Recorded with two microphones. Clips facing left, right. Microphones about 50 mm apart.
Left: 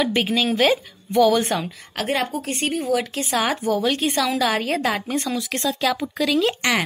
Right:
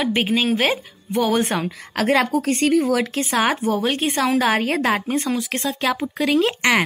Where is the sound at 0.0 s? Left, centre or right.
Centre; by 1.7 s right.